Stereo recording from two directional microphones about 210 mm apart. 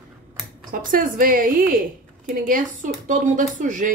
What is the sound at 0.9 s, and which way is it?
Speech, 40° right (ahead or behind).